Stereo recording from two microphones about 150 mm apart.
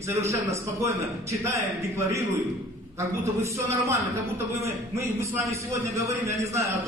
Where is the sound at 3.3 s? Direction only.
20° right (ahead or behind).